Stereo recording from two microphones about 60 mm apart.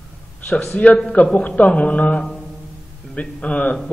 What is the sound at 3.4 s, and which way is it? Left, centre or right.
Mantra, left.